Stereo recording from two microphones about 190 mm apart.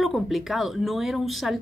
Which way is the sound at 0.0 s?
Centre (ahead or behind).